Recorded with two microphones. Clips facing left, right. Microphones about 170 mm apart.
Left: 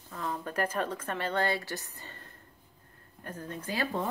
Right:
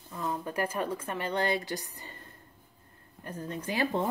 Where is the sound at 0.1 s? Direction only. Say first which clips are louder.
Right 2 dB; 15° right (ahead or behind).